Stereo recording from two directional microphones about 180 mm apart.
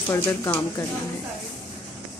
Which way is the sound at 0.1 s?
15° left (ahead or behind).